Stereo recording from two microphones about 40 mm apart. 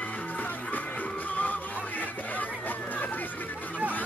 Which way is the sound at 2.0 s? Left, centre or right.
Left.